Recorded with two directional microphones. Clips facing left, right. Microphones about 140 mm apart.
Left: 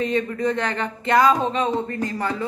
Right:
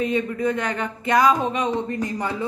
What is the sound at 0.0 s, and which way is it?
A woman's voice, 10° right (ahead or behind).